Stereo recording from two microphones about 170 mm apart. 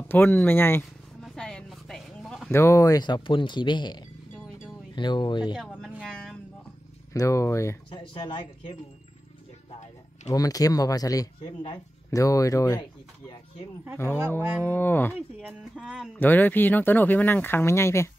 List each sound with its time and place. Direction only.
0.1 s speech: 10° left (ahead or behind)
1.2 s a sound: 5° left (ahead or behind)
2.5 s speech: 15° left (ahead or behind)
5.6 s speech: 5° left (ahead or behind)
6.0 s a sound: 5° left (ahead or behind)
7.1 s speech: 20° left (ahead or behind)
7.9 s speech: 30° left (ahead or behind)
10.3 s speech: 20° left (ahead or behind)
14.6 s speech: 10° left (ahead or behind)
15.1 s speech: 5° right (ahead or behind)
16.2 s speech: 10° left (ahead or behind)